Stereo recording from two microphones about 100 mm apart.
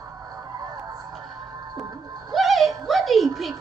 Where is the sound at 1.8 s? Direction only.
35° right (ahead or behind).